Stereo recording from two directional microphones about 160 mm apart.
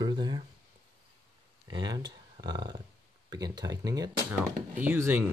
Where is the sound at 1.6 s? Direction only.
25° right (ahead or behind).